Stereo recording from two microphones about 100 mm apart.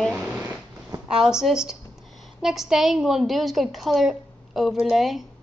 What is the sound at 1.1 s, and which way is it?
A woman's voice, 5° right (ahead or behind).